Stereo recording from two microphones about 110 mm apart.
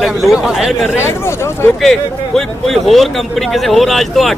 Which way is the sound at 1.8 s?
5° left (ahead or behind).